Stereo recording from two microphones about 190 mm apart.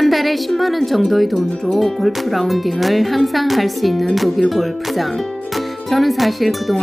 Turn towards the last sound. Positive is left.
turn(degrees=0)  # may be behind; listen again after turning